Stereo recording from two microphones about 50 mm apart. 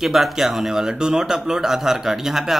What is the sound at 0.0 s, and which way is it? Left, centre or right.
A man's voice, centre.